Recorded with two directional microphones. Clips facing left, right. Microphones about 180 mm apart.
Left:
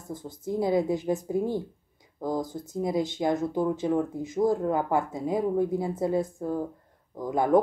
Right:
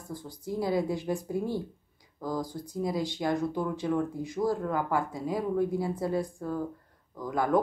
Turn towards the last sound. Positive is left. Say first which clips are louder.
# left 4 dB
turn(degrees=20)  # may be behind; listen again after turning